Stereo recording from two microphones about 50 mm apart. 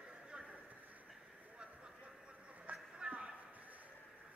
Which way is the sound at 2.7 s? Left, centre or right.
Right.